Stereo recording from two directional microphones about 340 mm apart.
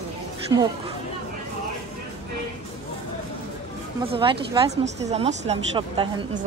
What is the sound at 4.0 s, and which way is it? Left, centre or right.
Speech, centre.